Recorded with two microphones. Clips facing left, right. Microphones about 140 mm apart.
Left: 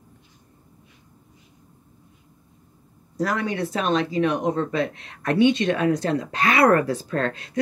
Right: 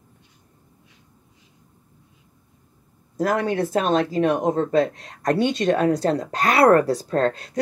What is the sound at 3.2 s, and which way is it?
Speech, 50° right (ahead or behind).